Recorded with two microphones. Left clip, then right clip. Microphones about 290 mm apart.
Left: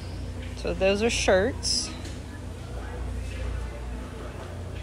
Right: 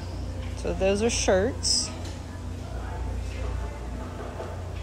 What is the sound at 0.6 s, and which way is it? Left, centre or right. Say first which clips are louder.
Speech: left 1 dB; centre.